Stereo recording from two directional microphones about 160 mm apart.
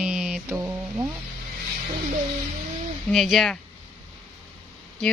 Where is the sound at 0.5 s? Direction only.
15° right (ahead or behind).